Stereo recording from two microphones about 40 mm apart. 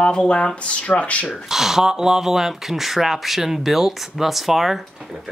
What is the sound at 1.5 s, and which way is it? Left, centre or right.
Speech, centre.